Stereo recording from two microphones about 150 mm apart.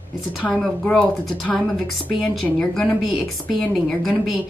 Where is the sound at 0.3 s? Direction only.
Centre (ahead or behind).